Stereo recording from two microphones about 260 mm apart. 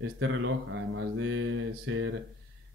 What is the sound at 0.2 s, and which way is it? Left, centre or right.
Mantra, right.